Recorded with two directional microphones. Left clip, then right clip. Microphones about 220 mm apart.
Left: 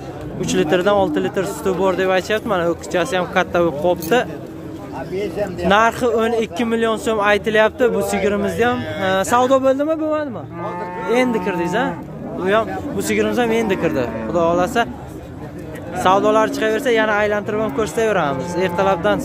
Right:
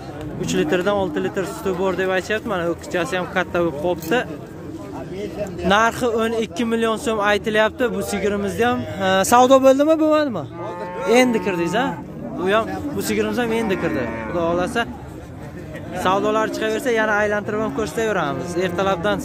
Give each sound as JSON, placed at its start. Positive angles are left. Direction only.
{"t": 0.4, "sound": "speech", "side_deg": 0}
{"t": 5.7, "sound": "speech", "side_deg": -5}
{"t": 9.0, "sound": "speech", "side_deg": -20}
{"t": 11.1, "sound": "speech", "side_deg": -20}
{"t": 16.0, "sound": "speech", "side_deg": 0}